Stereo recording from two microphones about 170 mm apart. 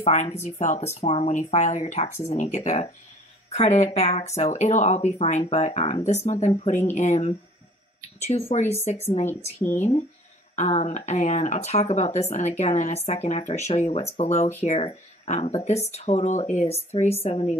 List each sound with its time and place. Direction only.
0.0 s speech: 40° left (ahead or behind)